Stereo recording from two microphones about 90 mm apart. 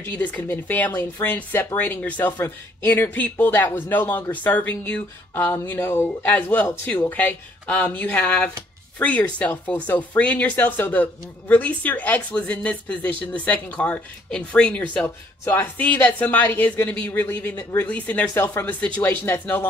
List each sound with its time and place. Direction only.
0.0 s a woman's voice: 20° left (ahead or behind)
2.9 s a woman's voice: 15° left (ahead or behind)
15.4 s a woman's voice: 20° left (ahead or behind)